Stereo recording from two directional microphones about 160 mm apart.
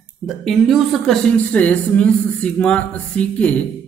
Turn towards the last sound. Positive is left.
turn(degrees=10)  # may be behind; listen again after turning